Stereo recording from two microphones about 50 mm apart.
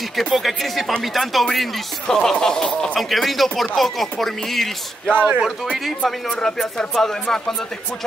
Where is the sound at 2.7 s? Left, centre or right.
Left.